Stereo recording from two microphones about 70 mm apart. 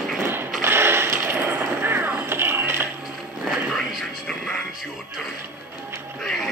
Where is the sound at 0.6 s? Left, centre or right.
Right.